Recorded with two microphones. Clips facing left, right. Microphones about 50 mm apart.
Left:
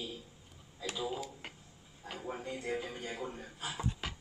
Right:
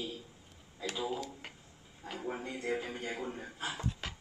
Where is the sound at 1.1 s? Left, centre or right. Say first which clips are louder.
Right 1 dB; centre.